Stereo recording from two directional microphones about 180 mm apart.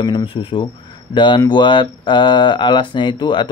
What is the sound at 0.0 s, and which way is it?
Speech, 25° left (ahead or behind).